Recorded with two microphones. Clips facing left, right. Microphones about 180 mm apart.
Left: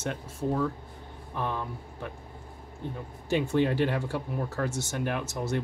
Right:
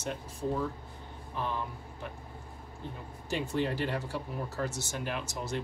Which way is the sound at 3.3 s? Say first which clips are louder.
Left 6 dB; 60° left (ahead or behind).